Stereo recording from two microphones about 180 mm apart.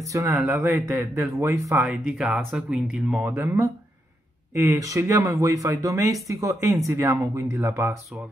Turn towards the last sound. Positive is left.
turn(degrees=-15)  # may be behind; listen again after turning